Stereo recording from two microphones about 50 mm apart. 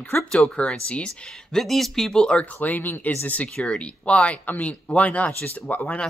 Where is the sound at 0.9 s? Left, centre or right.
Centre.